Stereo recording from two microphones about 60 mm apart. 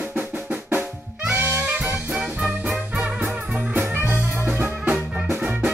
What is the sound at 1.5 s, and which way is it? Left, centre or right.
Music, right.